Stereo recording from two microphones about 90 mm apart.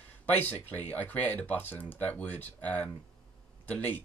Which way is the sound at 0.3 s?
20° left (ahead or behind).